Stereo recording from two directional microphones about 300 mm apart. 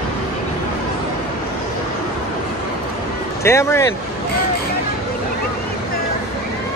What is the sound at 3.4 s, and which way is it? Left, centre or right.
Speech, centre.